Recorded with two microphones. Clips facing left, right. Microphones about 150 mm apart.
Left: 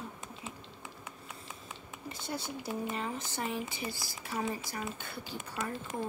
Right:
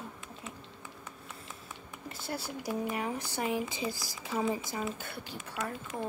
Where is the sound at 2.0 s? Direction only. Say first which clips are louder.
Even; 5° right (ahead or behind).